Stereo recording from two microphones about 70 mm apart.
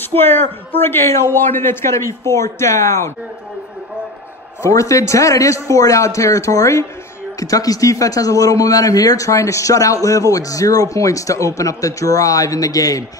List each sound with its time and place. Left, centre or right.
0.0 s a woman's voice: left
4.6 s a man's voice: left